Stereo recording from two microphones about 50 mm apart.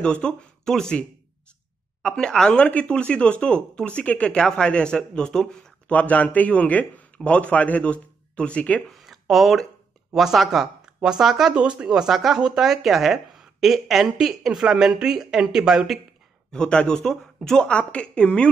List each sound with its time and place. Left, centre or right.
0.0 s speech: centre
2.0 s speech: centre
2.6 s speech: left
4.4 s speech: centre
5.9 s a man's voice: left
9.0 s a sound: centre
10.1 s speech: centre
11.5 s speech: centre
16.5 s speech: centre
17.5 s speech: centre